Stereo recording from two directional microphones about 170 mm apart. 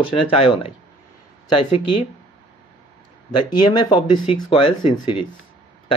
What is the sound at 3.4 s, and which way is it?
Speech, 25° left (ahead or behind).